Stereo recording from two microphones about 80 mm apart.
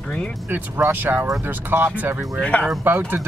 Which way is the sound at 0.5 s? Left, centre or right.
Right.